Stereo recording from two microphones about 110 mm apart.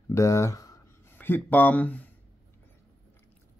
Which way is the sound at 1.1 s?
20° left (ahead or behind).